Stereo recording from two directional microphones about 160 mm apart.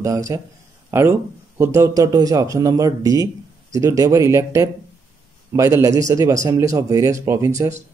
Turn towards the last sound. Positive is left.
turn(degrees=-20)  # may be behind; listen again after turning